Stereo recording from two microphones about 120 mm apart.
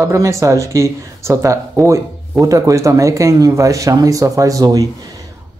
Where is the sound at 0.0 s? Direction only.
25° right (ahead or behind).